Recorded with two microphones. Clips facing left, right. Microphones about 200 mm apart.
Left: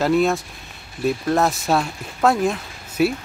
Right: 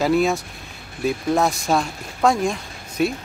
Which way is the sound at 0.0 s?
Centre (ahead or behind).